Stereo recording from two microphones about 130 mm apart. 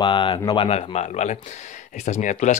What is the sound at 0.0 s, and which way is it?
Speech, 40° left (ahead or behind).